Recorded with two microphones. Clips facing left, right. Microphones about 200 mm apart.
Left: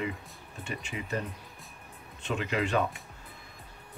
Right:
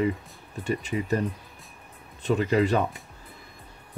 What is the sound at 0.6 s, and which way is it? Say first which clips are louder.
Speech: right 10 dB; 40° right (ahead or behind).